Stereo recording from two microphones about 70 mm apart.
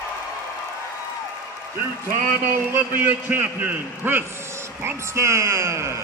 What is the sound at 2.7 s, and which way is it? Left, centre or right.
A man's voice, right.